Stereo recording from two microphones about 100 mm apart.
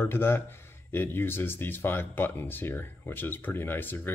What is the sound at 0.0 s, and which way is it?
Speech, 20° left (ahead or behind).